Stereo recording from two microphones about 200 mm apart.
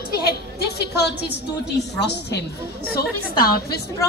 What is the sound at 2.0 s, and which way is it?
A woman's voice, 55° left (ahead or behind).